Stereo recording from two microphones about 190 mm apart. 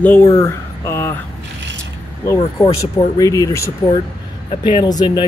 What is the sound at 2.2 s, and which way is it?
Speech, 20° left (ahead or behind).